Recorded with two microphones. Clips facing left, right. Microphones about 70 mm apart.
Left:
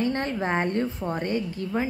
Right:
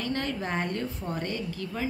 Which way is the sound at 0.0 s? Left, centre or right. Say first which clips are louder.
Left 5 dB; left.